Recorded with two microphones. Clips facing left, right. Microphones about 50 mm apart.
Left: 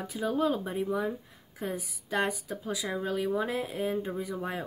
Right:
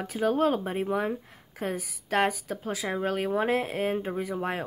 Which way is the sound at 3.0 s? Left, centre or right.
Right.